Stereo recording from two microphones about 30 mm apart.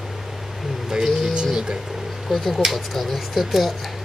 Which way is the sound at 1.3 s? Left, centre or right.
Right.